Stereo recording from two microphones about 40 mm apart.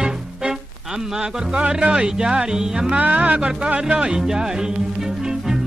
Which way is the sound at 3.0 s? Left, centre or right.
Right.